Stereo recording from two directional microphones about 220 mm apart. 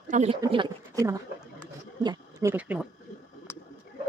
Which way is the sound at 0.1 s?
30° right (ahead or behind).